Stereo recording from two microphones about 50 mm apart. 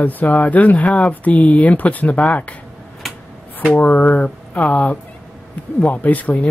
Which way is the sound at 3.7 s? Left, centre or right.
Left.